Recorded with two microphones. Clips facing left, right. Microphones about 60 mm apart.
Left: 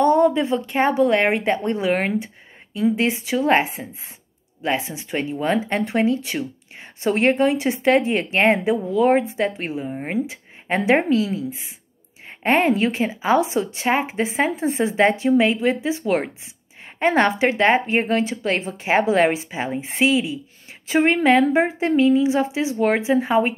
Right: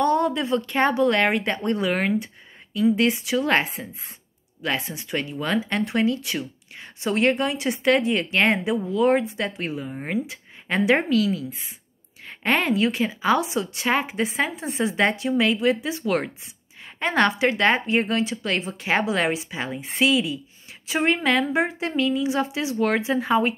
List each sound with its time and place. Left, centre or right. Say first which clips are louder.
0.0 s a sound: left 5 dB; left
0.6 s speech: left 2 dB; centre; by 3.4 s left
3.8 s speech: left 2 dB; centre
4.6 s speech: left 3 dB; left
9.7 s a woman's voice: left 2 dB; left
17.0 s speech: left 3 dB; left